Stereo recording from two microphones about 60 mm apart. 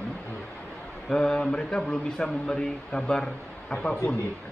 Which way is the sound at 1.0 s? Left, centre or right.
Centre.